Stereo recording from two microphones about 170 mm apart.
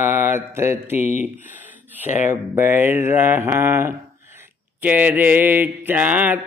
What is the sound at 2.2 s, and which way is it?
Mantra, 15° right (ahead or behind).